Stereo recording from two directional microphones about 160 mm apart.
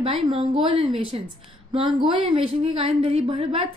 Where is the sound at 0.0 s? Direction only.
35° right (ahead or behind).